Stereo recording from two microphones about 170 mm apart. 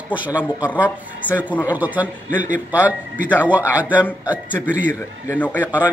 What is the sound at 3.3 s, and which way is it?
A man's voice, 10° right (ahead or behind).